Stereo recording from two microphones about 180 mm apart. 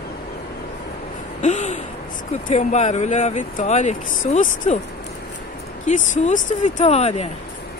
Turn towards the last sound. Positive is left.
turn(degrees=40)  # may be behind; listen again after turning